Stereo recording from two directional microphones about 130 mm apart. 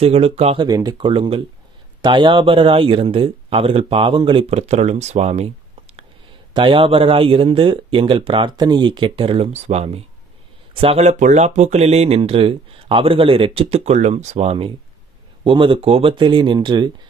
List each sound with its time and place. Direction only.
0.0 s speech: 50° right (ahead or behind)
0.6 s speech: 30° right (ahead or behind)
4.5 s speech: 55° right (ahead or behind)
6.5 s speech: 40° right (ahead or behind)
15.4 s speech: 40° right (ahead or behind)